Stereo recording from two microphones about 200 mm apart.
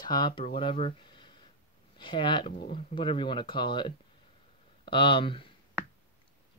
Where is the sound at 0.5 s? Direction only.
25° left (ahead or behind).